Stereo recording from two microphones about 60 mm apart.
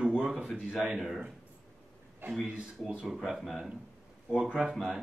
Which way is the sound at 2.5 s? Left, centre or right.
Centre.